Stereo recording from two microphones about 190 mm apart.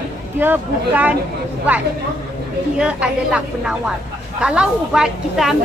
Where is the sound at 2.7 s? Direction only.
5° right (ahead or behind).